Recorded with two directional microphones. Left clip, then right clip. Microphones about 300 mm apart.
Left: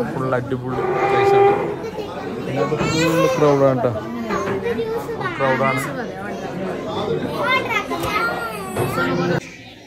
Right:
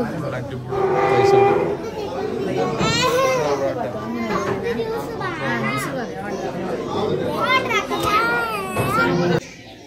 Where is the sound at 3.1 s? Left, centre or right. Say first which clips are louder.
Left 2 dB; right.